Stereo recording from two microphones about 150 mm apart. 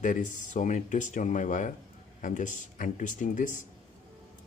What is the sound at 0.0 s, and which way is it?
Speech, 60° left (ahead or behind).